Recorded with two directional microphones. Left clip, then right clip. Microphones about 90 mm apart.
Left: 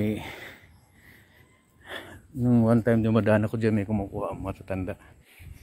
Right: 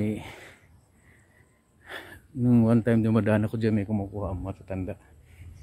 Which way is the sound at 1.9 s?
60° right (ahead or behind).